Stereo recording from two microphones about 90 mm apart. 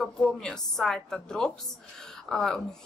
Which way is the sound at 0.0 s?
5° left (ahead or behind).